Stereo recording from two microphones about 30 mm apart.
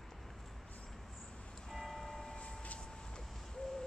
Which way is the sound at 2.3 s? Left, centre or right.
Left.